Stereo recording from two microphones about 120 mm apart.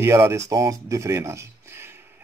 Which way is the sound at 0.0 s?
25° right (ahead or behind).